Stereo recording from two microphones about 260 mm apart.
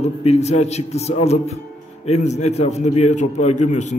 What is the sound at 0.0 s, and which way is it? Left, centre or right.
A man's voice, left.